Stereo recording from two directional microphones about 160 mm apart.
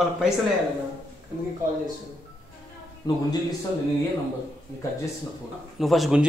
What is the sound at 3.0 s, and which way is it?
Speech, 25° left (ahead or behind).